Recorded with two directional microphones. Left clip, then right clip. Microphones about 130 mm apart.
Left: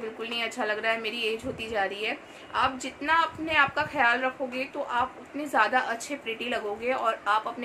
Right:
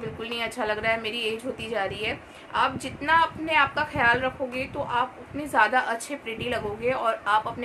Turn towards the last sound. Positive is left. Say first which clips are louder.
# right 2 dB
turn(degrees=-15)  # may be behind; listen again after turning